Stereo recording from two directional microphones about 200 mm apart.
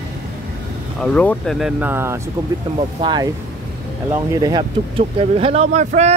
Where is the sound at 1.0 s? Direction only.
5° left (ahead or behind).